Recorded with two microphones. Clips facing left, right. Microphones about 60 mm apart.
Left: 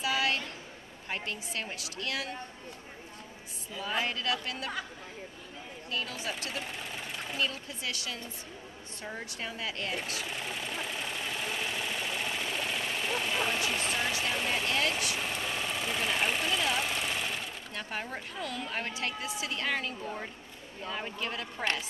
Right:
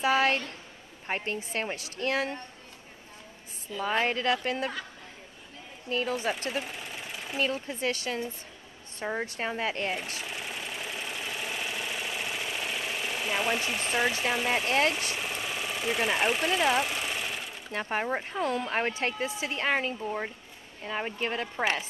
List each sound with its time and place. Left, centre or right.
0.0 s speech: right
3.8 s speech: right
5.9 s speech: right
6.6 s engine: centre
7.3 s speech: right
10.2 s engine: centre
14.2 s speech: centre
15.1 s engine: centre
17.7 s speech: right